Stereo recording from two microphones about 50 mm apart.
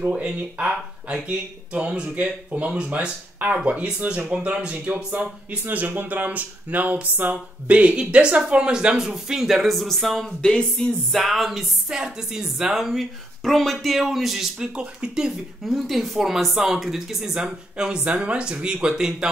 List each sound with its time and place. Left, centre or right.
0.0 s speech: right
3.3 s speech: right
5.7 s speech: right; by 10.3 s centre
10.4 s speech: centre
11.1 s speech: centre
11.9 s speech: centre
12.8 s speech: centre
14.6 s speech: centre
15.6 s speech: centre
17.3 s speech: centre